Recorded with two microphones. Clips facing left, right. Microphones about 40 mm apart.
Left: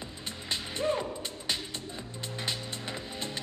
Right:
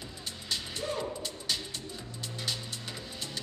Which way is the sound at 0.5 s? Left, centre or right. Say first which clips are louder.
Left 5 dB; left.